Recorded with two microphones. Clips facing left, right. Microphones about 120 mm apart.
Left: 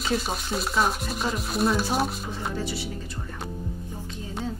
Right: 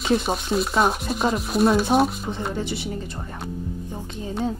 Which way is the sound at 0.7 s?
55° right (ahead or behind).